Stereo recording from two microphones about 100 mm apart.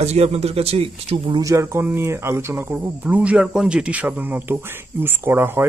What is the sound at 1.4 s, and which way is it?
Speech, 30° right (ahead or behind).